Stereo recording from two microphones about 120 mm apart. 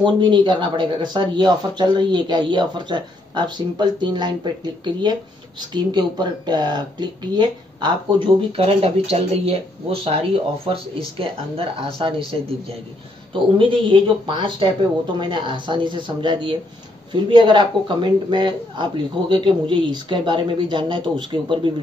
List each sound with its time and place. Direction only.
0.0 s speech: 40° right (ahead or behind)
5.7 s speech: 40° right (ahead or behind)
13.3 s speech: 45° right (ahead or behind)